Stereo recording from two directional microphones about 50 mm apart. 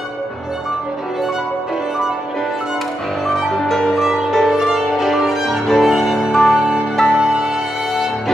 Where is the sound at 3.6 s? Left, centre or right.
Centre.